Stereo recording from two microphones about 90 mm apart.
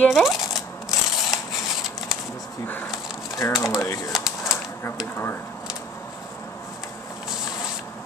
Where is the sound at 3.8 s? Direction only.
35° left (ahead or behind).